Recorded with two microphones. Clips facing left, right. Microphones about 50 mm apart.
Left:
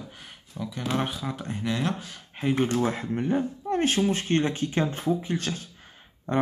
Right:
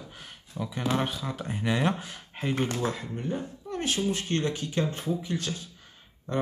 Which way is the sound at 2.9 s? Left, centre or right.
Left.